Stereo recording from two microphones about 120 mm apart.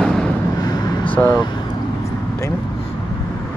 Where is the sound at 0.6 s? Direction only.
35° left (ahead or behind).